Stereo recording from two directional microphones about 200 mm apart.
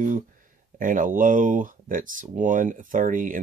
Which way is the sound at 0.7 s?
40° right (ahead or behind).